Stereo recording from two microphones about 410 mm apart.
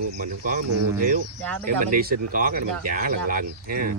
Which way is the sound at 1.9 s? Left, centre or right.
Centre.